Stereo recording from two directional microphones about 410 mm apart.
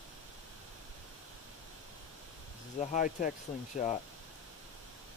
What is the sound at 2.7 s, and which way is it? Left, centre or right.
Speech, centre.